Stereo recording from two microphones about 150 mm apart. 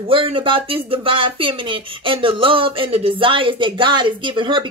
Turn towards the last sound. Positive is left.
turn(degrees=-35)  # may be behind; listen again after turning